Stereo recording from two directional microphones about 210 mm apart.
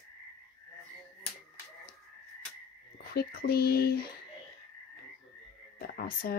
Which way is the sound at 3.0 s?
45° left (ahead or behind).